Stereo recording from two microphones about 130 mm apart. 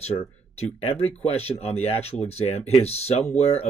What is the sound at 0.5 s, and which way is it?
Speech, 50° left (ahead or behind).